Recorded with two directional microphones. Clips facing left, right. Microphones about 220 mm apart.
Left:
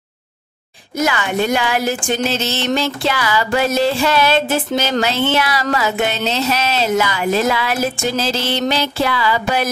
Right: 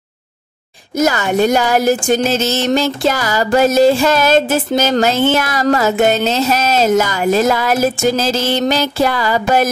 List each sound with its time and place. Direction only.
0.9 s speech: 40° right (ahead or behind)